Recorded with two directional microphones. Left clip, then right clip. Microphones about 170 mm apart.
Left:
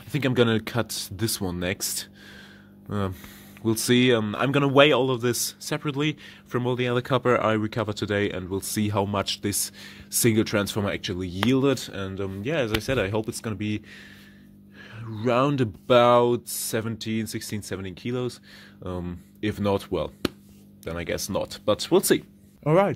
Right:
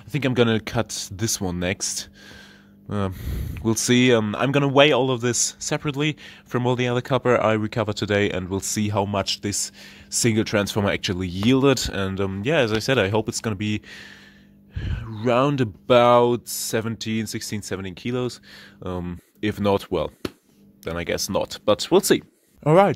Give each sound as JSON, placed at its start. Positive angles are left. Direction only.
{"t": 0.1, "sound": "speech", "side_deg": -15}